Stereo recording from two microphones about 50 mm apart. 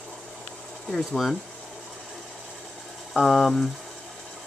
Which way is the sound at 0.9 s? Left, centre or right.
Centre.